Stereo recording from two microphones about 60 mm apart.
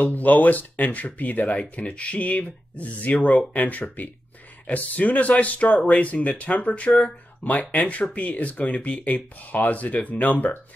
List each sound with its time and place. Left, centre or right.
0.0 s speech: left